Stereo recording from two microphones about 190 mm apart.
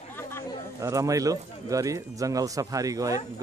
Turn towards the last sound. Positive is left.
turn(degrees=-20)  # may be behind; listen again after turning